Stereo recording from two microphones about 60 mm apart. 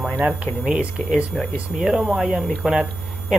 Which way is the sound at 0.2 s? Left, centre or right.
Centre.